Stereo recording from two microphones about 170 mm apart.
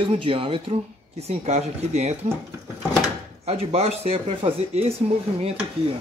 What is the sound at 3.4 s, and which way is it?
Speech, 35° right (ahead or behind).